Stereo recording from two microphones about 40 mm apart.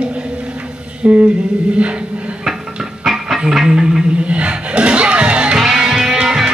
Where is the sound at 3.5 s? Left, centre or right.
Centre.